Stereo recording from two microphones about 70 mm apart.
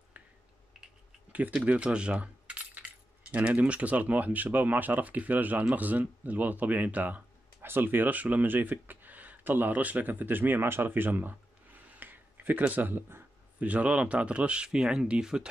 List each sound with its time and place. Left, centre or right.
0.2 s finger snapping: right
1.3 s speech: right